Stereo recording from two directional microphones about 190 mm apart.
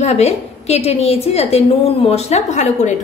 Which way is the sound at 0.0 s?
35° left (ahead or behind).